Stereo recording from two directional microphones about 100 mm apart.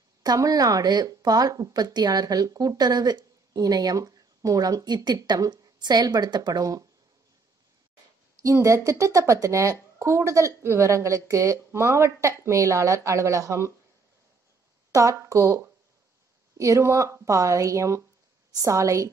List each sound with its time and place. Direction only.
0.2 s speech: 40° right (ahead or behind)
8.4 s speech: 30° right (ahead or behind)
14.9 s speech: 35° right (ahead or behind)